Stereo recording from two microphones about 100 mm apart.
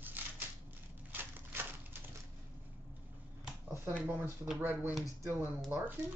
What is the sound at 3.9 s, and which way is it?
Speech, 20° right (ahead or behind).